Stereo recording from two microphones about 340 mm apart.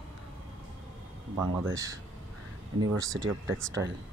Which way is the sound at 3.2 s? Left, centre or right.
Right.